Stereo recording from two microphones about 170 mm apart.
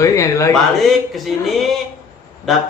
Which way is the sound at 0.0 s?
20° left (ahead or behind).